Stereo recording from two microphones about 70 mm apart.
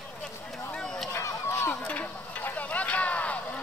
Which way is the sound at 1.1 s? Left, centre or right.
Left.